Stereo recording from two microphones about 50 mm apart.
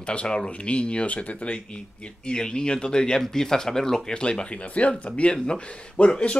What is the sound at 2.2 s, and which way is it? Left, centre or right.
Speech, centre.